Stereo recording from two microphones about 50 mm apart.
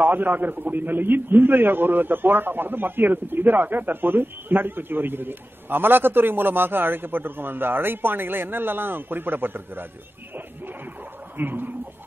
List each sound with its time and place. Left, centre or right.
0.0 s a man's voice: right
11.3 s a man's voice: right